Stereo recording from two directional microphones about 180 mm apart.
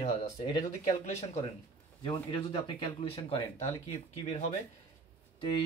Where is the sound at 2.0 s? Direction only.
25° left (ahead or behind).